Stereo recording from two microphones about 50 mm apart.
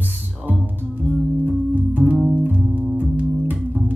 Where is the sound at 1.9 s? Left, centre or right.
Right.